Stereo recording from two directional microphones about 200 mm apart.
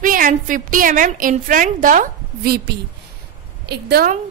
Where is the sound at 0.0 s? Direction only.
40° right (ahead or behind).